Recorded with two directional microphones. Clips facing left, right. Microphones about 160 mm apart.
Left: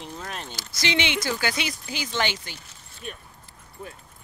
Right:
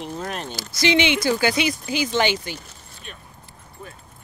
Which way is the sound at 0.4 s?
45° right (ahead or behind).